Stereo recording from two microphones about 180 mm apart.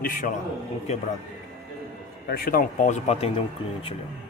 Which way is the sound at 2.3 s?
55° left (ahead or behind).